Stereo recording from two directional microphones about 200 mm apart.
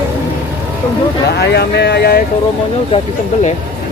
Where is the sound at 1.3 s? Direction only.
55° left (ahead or behind).